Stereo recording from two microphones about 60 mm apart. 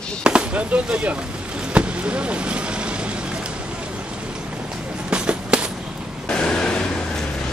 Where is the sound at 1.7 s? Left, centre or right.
Centre.